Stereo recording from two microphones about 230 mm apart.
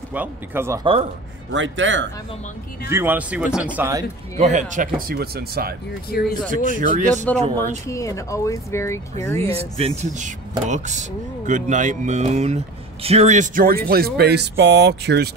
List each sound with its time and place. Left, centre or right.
0.1 s speech: centre
1.5 s a man's voice: right
2.9 s speech: centre
4.4 s speech: right
6.0 s speech: left
6.5 s speech: right
7.8 s speech: centre
9.5 s speech: right